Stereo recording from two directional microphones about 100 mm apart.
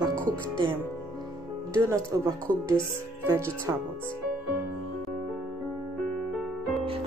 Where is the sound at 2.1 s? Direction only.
30° right (ahead or behind).